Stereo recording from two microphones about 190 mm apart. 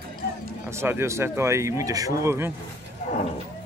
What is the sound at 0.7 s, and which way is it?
Speech, 15° right (ahead or behind).